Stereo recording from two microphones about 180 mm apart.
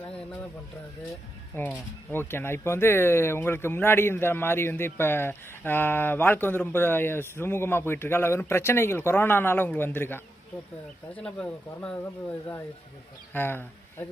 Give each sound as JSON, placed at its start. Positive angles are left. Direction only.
{"t": 1.5, "sound": "speech", "side_deg": 10}
{"t": 13.3, "sound": "speech", "side_deg": 10}